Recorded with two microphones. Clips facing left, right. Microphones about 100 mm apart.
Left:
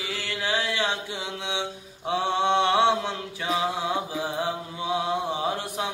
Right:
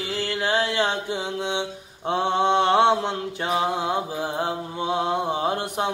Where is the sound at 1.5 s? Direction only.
50° right (ahead or behind).